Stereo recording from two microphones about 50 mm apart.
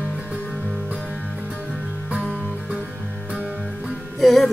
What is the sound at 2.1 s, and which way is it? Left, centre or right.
Music, right.